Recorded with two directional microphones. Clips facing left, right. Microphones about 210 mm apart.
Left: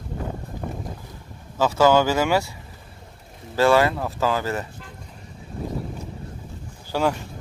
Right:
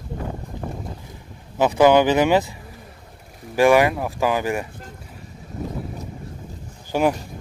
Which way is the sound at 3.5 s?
15° right (ahead or behind).